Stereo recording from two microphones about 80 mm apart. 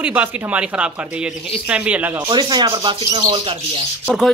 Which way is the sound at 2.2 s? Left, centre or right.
Right.